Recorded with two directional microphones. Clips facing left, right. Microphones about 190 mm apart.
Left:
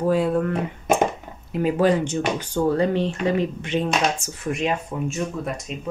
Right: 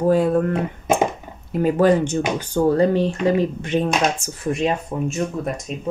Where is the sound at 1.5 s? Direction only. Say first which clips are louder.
Right 3 dB; 45° right (ahead or behind).